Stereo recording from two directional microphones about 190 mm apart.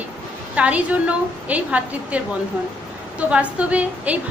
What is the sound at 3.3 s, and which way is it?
Speech, 5° right (ahead or behind).